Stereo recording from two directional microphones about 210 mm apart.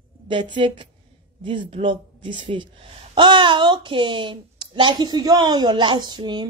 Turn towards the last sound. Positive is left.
turn(degrees=-20)  # may be behind; listen again after turning